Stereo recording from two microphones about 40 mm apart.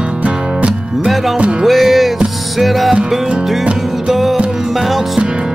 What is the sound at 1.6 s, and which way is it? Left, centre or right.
Music, centre.